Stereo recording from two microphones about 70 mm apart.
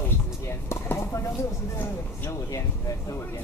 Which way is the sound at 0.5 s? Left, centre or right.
Left.